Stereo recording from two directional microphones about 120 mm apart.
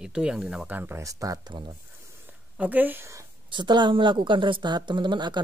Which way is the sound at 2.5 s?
15° right (ahead or behind).